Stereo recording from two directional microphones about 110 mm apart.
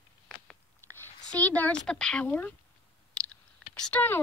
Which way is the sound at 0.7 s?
20° left (ahead or behind).